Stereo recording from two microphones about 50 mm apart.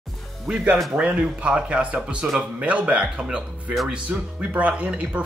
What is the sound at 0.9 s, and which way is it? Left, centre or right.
Speech, right.